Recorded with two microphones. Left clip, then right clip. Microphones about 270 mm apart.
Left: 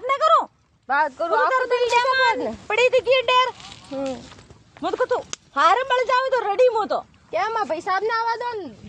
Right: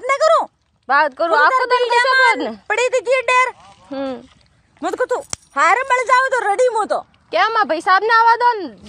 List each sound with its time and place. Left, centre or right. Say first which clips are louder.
0.0 s a sound: right 4 dB; right
0.8 s a woman's voice: right 6 dB; right
2.7 s a woman's voice: right 1 dB; right
4.8 s a woman's voice: right 3 dB; right
7.2 s a woman's voice: right 8 dB; right